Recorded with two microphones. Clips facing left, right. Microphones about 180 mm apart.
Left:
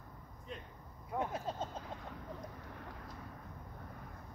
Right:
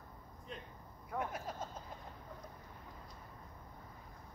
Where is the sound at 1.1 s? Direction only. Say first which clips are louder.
Left 3 dB; 25° left (ahead or behind).